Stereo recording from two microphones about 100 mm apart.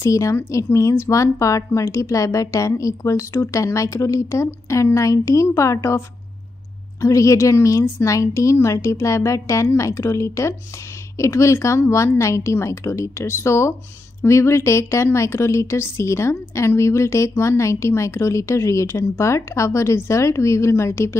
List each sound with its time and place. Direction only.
0.0 s a woman's voice: 30° left (ahead or behind)